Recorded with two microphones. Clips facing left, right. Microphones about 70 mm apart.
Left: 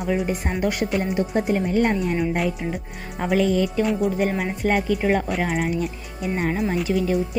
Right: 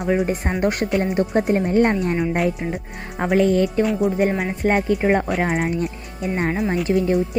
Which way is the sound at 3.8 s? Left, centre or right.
Centre.